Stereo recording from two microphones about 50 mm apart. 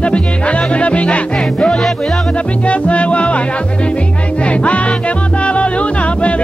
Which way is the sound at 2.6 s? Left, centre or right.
Left.